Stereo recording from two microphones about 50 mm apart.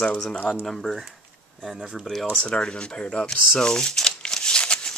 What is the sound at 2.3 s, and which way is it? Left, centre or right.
Speech, left.